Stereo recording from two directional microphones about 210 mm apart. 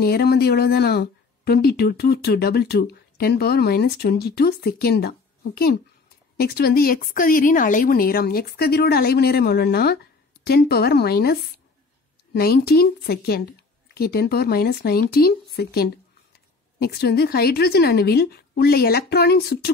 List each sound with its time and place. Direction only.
0.0 s speech: 45° left (ahead or behind)
12.4 s speech: 50° left (ahead or behind)